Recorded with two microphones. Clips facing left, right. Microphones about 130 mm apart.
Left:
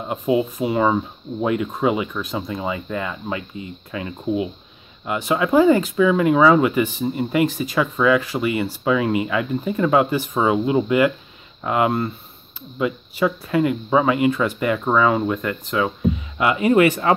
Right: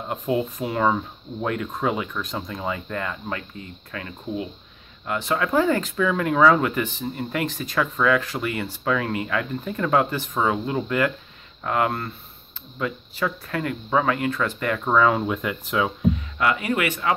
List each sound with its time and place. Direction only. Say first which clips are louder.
0.1 s speech: left 4 dB; 5° left (ahead or behind)
16.3 s speech: left 6 dB; 20° left (ahead or behind)
16.8 s speech: left 8 dB; 35° left (ahead or behind)